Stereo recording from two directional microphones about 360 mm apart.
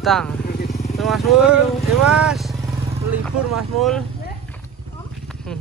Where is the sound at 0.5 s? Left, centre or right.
Left.